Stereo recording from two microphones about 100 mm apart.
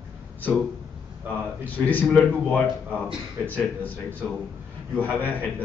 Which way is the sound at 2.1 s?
10° left (ahead or behind).